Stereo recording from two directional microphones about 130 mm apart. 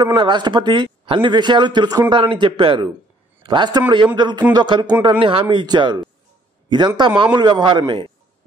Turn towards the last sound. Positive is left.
turn(degrees=-35)  # may be behind; listen again after turning